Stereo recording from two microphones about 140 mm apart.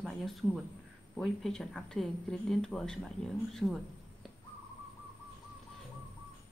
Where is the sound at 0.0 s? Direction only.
Centre (ahead or behind).